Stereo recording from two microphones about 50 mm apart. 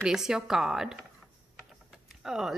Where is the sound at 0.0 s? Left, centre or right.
Centre.